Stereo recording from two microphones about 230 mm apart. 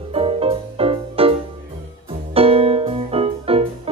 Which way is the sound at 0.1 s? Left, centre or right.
Right.